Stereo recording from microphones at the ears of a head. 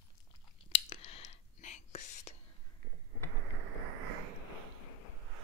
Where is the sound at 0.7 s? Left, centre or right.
Left.